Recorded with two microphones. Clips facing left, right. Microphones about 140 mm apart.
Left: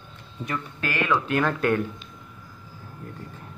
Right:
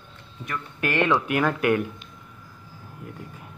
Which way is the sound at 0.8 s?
25° right (ahead or behind).